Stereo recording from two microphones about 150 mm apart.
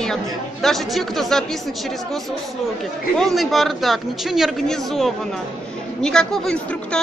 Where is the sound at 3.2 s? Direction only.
Centre (ahead or behind).